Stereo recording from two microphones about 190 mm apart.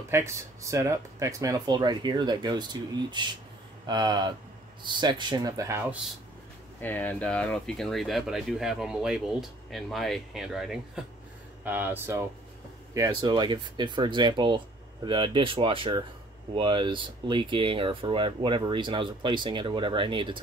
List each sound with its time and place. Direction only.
0.1 s speech: 15° right (ahead or behind)
6.8 s speech: 10° left (ahead or behind); by 20.3 s 25° right (ahead or behind)